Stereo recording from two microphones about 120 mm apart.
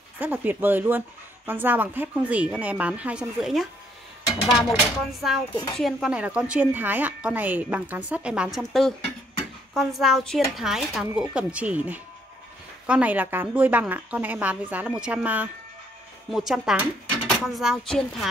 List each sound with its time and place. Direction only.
0.2 s speech: 15° right (ahead or behind); by 18.3 s centre (ahead or behind)